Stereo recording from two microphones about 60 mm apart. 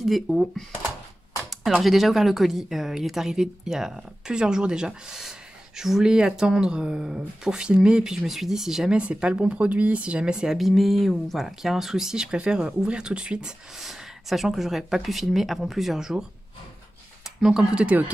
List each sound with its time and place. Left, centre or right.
0.0 s speech: centre
1.8 s speech: centre
10.6 s speech: centre
17.4 s speech: centre
17.8 s speech: right